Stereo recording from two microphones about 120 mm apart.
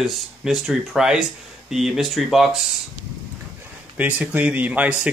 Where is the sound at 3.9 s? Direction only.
10° right (ahead or behind).